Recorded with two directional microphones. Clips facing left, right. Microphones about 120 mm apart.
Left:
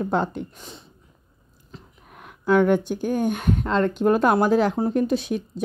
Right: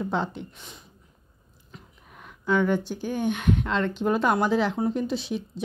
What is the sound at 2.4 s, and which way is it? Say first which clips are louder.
Speech: left 5 dB; 55° left (ahead or behind).